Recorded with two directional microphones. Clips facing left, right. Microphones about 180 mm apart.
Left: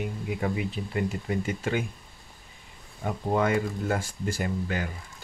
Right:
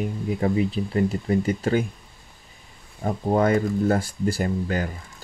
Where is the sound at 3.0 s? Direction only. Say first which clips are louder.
Right 5 dB; 40° right (ahead or behind).